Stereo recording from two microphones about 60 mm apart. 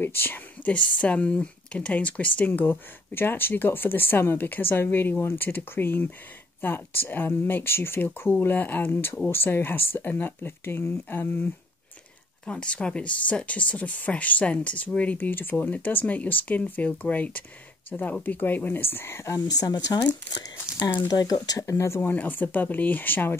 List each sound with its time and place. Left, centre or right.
0.0 s speech: left
0.7 s speech: left
12.4 s speech: left
19.4 s speech: left
21.1 s speech: left
22.1 s speech: left